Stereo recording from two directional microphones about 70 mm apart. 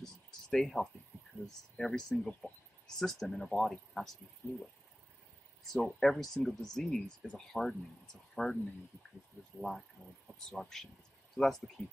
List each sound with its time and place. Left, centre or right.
0.0 s a sound: centre
1.4 s speech: centre
4.4 s speech: left
5.7 s speech: centre
9.6 s speech: centre